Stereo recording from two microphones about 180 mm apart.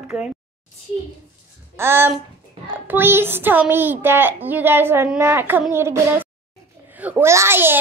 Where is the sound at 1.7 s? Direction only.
15° right (ahead or behind).